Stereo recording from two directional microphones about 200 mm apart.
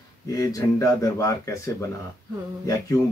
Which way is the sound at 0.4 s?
15° left (ahead or behind).